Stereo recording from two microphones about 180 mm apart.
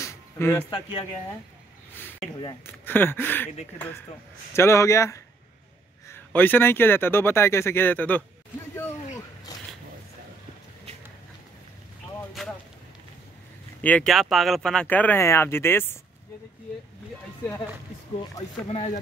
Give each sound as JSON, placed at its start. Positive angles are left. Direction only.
{"t": 0.0, "sound": "a sound", "side_deg": 15}
{"t": 0.7, "sound": "speech", "side_deg": 30}
{"t": 2.6, "sound": "speech", "side_deg": 10}
{"t": 12.3, "sound": "a sound", "side_deg": 0}
{"t": 13.7, "sound": "speech", "side_deg": 5}
{"t": 18.7, "sound": "speech", "side_deg": 35}